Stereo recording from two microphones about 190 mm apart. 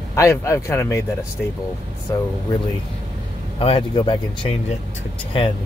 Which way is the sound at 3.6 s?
30° left (ahead or behind).